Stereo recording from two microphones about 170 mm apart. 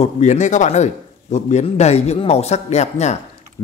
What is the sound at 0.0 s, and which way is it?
Speech, 45° left (ahead or behind).